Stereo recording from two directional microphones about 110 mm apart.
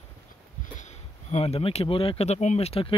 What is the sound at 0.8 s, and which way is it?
Speech, 80° left.